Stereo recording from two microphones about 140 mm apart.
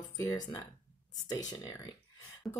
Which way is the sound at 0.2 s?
25° left (ahead or behind).